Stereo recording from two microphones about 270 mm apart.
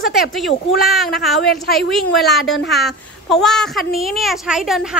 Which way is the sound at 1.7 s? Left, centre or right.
Left.